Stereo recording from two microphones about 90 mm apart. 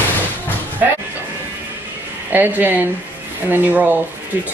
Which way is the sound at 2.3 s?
20° right (ahead or behind).